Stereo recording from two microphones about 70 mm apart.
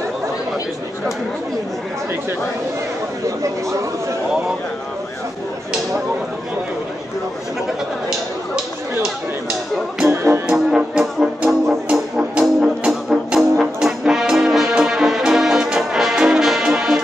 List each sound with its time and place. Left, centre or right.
10.0 s music: right
10.5 s brass instrument: centre
12.2 s music: centre
13.4 s brass instrument: centre